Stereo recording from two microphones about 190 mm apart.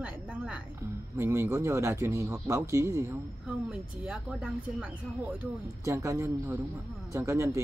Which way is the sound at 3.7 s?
5° right (ahead or behind).